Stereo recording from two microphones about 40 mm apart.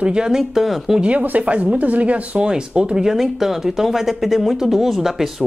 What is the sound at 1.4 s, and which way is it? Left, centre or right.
Speech, right.